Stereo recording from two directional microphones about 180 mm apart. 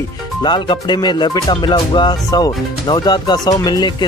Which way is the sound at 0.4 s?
25° left (ahead or behind).